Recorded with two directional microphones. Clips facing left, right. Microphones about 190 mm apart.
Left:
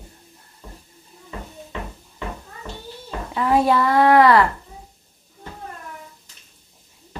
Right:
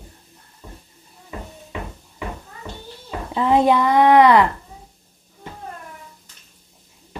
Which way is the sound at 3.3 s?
20° right (ahead or behind).